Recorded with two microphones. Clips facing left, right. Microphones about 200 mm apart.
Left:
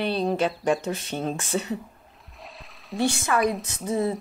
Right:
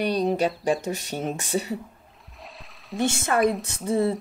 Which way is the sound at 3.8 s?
30° right (ahead or behind).